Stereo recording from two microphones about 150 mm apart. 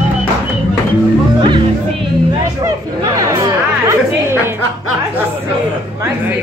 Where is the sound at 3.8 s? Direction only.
15° right (ahead or behind).